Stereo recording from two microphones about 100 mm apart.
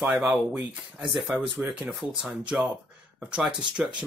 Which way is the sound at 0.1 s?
5° right (ahead or behind).